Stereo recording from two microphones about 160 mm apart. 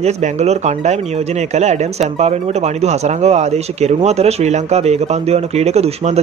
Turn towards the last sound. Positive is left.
turn(degrees=-40)  # may be behind; listen again after turning